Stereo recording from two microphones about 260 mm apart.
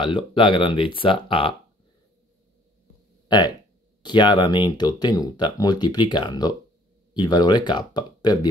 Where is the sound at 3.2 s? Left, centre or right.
Centre.